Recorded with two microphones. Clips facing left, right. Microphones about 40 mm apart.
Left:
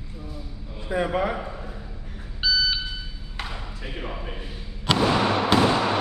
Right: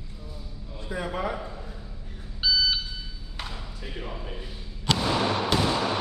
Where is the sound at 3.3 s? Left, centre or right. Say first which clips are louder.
Left 4 dB; left.